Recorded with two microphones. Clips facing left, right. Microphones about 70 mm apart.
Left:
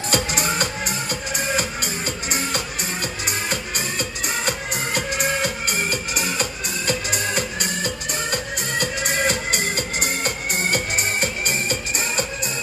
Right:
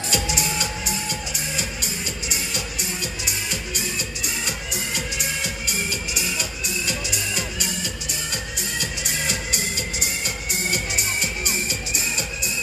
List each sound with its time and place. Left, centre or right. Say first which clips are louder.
0.1 s music: left 3 dB; left
3.3 s music: left 4 dB; left